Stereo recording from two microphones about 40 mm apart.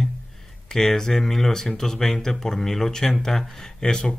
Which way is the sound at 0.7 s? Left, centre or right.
Centre.